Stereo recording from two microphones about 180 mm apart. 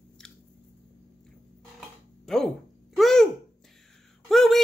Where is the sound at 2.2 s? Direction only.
Centre (ahead or behind).